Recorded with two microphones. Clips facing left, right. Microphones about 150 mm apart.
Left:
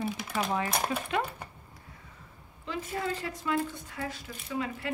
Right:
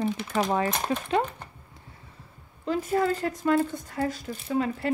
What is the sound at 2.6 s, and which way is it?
Speech, 45° right (ahead or behind).